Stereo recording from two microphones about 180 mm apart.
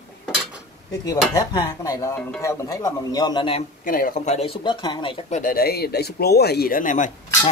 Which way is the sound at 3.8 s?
50° left (ahead or behind).